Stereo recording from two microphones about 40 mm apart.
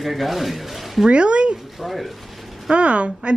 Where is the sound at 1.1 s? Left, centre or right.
Right.